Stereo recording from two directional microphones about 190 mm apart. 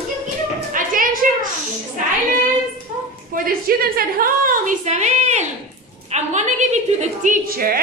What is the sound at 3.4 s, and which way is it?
A woman's voice, 50° right (ahead or behind).